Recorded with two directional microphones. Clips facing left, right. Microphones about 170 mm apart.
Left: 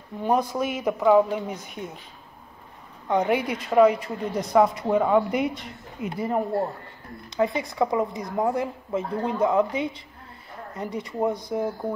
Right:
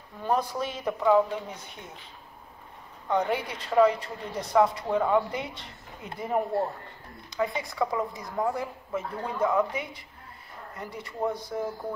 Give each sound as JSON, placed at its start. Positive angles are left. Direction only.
{"t": 0.2, "sound": "a woman's voice", "side_deg": 10}
{"t": 3.1, "sound": "a woman's voice", "side_deg": 10}
{"t": 7.2, "sound": "a woman's voice", "side_deg": 25}